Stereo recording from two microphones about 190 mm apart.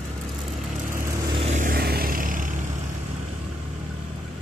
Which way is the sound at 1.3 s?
35° right (ahead or behind).